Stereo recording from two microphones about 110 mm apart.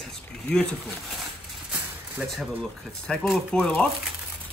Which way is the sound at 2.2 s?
10° right (ahead or behind).